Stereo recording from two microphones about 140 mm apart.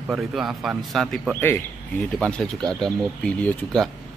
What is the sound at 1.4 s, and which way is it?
Speech, 15° left (ahead or behind).